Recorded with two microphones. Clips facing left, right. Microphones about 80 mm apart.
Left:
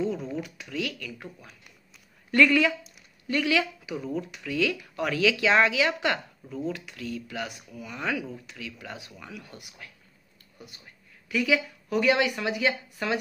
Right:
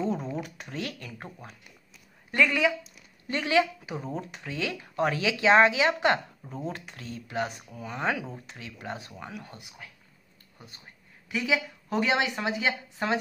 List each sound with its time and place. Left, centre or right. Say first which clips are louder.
0.0 s speech: even; right
2.3 s speech: left 3 dB; centre
3.3 s speech: right 1 dB; right
11.2 s speech: left 3 dB; right